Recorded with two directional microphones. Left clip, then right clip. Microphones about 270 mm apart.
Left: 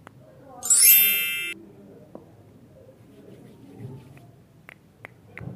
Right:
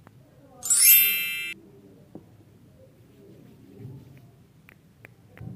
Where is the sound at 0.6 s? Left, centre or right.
Centre.